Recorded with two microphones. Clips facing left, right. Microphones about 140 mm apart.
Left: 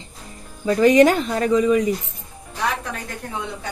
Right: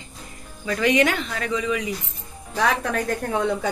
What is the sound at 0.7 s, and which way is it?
Speech, 40° left (ahead or behind).